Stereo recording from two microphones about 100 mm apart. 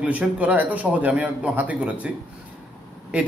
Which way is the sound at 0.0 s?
15° right (ahead or behind).